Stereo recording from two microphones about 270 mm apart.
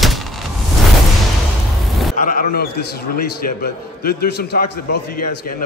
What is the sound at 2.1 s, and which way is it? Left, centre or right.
A man's voice, left.